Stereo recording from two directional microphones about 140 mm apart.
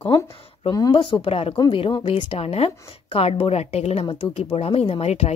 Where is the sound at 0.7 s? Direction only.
25° left (ahead or behind).